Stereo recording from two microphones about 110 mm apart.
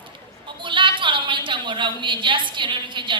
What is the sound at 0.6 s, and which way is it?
A woman's voice, 50° right (ahead or behind).